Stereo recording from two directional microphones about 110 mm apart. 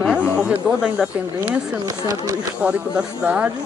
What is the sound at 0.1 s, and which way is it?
Speech, 5° right (ahead or behind).